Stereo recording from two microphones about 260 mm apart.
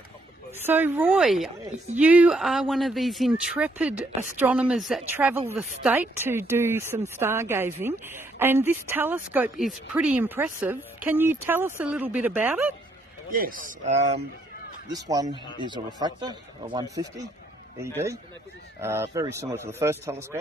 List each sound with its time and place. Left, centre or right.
0.7 s a woman's voice: centre
13.3 s a man's voice: right
14.9 s a woman's voice: centre